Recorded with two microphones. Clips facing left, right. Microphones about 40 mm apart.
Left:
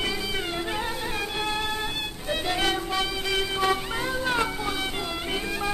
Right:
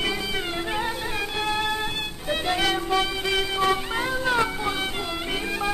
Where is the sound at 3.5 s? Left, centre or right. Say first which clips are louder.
Right 2 dB; centre.